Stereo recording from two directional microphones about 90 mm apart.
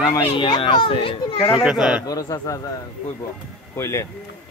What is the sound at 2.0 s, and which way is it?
Speech, 45° left (ahead or behind).